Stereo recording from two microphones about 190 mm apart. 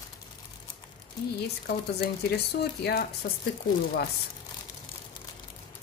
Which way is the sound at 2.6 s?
60° left (ahead or behind).